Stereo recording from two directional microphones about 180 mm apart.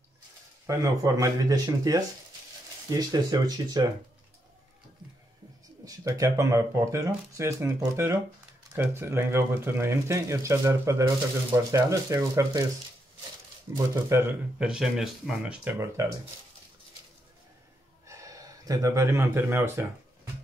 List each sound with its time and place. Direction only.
0.7 s speech: 20° right (ahead or behind)
5.9 s speech: 15° right (ahead or behind)
13.7 s speech: 15° right (ahead or behind)
18.0 s speech: 15° right (ahead or behind)